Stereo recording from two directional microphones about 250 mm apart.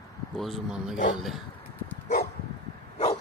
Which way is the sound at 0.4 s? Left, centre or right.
Centre.